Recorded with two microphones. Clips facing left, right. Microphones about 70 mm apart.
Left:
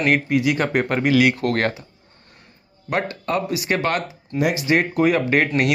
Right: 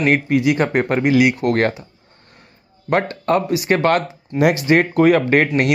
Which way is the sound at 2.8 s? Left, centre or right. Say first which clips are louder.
Right 6 dB; right.